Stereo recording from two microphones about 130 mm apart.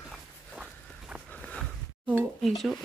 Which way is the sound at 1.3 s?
10° left (ahead or behind).